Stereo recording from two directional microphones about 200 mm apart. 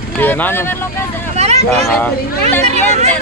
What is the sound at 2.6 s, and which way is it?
Speech, 35° right (ahead or behind).